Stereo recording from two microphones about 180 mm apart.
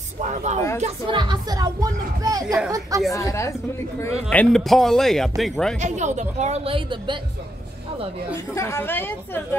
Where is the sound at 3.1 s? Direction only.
15° left (ahead or behind).